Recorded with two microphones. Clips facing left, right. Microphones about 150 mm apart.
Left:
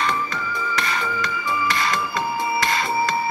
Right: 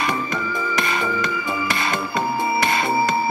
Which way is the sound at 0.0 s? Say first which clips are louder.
Right 1 dB; 20° right (ahead or behind).